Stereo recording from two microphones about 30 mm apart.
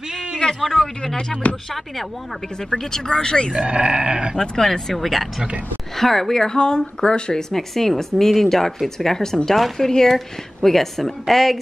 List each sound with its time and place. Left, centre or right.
0.6 s speech: centre
1.5 s speech: left
2.7 s speech: left
3.5 s speech: right
4.4 s speech: centre
7.5 s speech: centre